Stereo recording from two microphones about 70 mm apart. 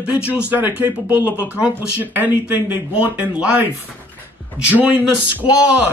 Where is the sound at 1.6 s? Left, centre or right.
Right.